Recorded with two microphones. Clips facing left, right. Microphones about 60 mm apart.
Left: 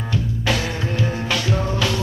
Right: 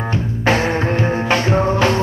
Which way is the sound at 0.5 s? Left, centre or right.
Right.